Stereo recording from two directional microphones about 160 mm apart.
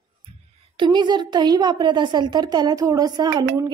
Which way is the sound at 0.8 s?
30° right (ahead or behind).